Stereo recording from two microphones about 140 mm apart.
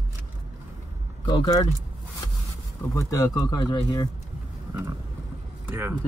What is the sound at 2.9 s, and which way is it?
Speech, 25° left (ahead or behind).